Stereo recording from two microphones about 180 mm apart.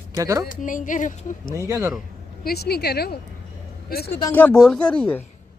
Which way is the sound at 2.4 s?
60° left (ahead or behind).